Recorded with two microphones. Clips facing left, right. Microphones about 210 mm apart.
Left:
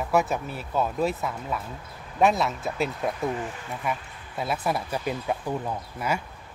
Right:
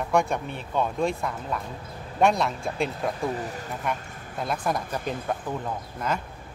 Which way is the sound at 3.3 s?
40° right (ahead or behind).